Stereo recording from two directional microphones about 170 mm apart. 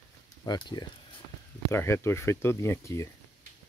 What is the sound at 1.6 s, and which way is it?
Speech, 15° left (ahead or behind).